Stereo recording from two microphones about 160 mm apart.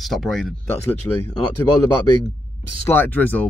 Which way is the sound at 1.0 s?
15° left (ahead or behind).